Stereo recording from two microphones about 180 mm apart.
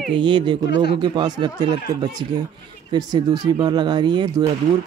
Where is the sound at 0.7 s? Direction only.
70° left (ahead or behind).